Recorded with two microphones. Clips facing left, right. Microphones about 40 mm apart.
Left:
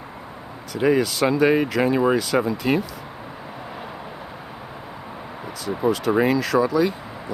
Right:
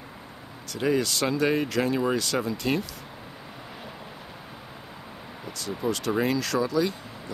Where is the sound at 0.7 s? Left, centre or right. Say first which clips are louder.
Left 6 dB; centre.